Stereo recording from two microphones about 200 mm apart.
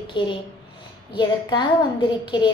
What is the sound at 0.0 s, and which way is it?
A woman's voice, 25° left (ahead or behind).